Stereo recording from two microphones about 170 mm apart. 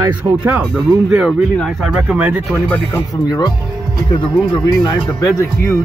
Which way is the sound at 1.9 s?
10° right (ahead or behind).